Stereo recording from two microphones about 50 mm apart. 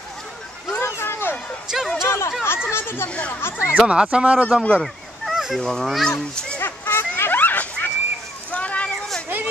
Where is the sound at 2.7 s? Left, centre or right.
Left.